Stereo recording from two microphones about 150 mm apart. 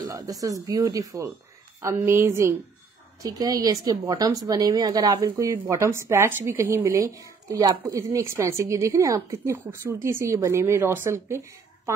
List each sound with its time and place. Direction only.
0.0 s speech: 25° right (ahead or behind)